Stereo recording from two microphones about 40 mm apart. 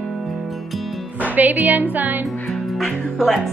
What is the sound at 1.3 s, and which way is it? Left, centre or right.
Speech, right.